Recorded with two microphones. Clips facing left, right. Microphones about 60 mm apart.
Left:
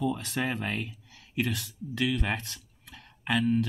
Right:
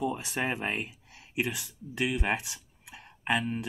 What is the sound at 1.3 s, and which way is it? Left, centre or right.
Speech, centre.